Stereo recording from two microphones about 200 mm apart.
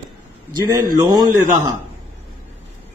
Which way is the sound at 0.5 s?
20° right (ahead or behind).